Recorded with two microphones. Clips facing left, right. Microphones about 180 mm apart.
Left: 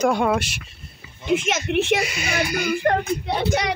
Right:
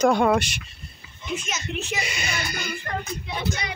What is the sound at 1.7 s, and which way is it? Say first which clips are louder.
Speech: left 11 dB; 65° left (ahead or behind).